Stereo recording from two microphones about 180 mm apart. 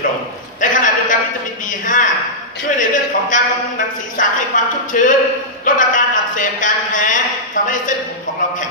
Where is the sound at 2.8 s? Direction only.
45° left (ahead or behind).